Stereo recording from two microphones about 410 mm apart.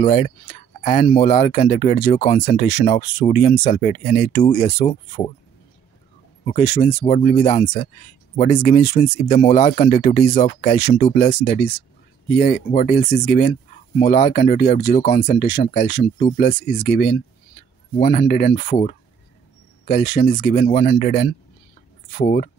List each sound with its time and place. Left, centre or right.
0.0 s speech: centre
6.4 s speech: centre